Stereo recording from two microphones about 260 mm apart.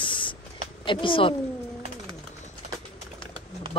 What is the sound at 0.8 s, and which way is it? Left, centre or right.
Speech, centre.